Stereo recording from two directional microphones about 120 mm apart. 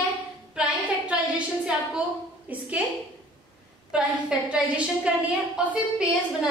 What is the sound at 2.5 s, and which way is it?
Speech, 15° right (ahead or behind).